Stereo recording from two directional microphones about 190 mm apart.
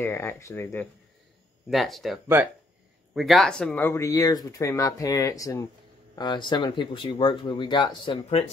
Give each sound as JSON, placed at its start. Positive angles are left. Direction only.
{"t": 0.0, "sound": "speech", "side_deg": 10}
{"t": 1.7, "sound": "speech", "side_deg": 0}
{"t": 3.2, "sound": "speech", "side_deg": 0}